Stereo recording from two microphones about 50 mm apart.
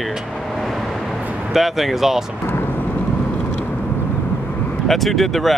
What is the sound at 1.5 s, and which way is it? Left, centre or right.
Speech, centre.